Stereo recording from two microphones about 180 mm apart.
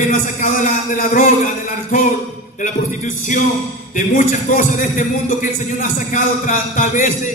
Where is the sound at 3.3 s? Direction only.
45° left (ahead or behind).